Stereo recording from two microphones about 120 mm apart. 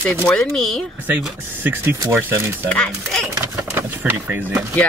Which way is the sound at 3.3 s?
25° right (ahead or behind).